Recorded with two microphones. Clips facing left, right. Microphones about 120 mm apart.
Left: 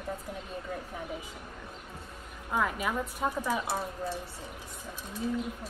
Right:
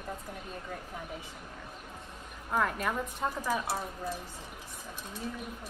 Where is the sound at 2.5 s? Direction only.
5° left (ahead or behind).